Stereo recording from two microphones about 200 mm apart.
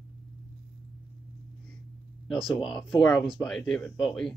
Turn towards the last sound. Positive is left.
turn(degrees=0)  # may be behind; listen again after turning